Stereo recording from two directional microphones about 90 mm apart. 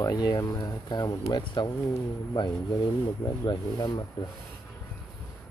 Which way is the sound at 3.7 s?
50° left (ahead or behind).